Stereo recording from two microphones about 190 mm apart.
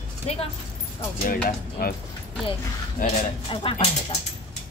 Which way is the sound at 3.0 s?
50° left (ahead or behind).